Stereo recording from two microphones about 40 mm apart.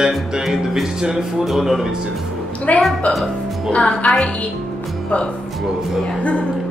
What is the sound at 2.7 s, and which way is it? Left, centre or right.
A woman's voice, left.